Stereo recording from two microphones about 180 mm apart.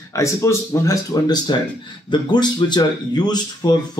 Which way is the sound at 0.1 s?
15° left (ahead or behind).